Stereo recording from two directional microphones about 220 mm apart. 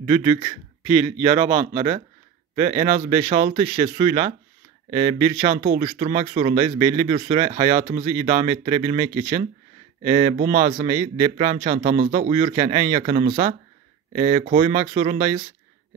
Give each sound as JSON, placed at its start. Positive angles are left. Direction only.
{"t": 0.0, "sound": "a man's voice", "side_deg": -25}